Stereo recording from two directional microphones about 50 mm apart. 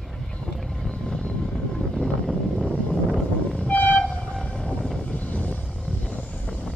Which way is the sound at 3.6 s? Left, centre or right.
Left.